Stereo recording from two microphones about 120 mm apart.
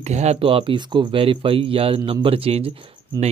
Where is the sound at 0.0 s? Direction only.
70° right (ahead or behind).